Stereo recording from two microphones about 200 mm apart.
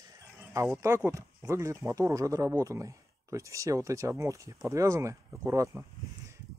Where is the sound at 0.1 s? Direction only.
15° right (ahead or behind).